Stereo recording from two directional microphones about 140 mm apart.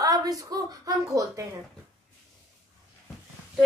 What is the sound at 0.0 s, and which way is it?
A woman's voice, 25° right (ahead or behind).